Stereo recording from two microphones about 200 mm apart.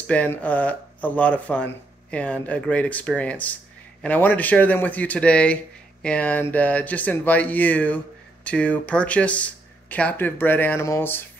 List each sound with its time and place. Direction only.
0.0 s speech: 5° left (ahead or behind)